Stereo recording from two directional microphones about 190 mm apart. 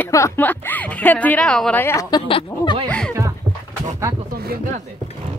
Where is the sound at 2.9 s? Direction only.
5° left (ahead or behind).